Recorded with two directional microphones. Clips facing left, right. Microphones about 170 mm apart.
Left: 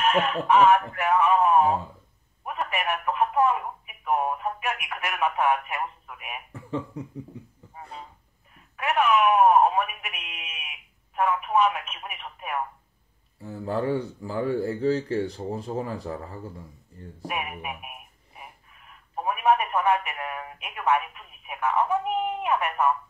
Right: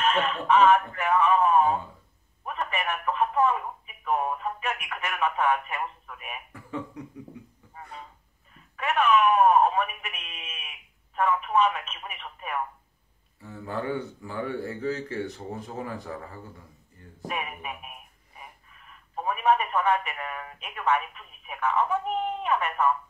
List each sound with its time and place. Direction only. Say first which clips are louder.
0.0 s speech: left 2 dB; 10° left (ahead or behind)
2.4 s telephone: left 2 dB; 10° left (ahead or behind)
6.5 s a sound: left 5 dB; 25° left (ahead or behind)
8.7 s speech: even; 10° left (ahead or behind)
13.4 s speech: left 5 dB; 30° left (ahead or behind)
17.3 s radio: left 1 dB; 10° left (ahead or behind)
19.1 s speech: left 1 dB; 10° left (ahead or behind)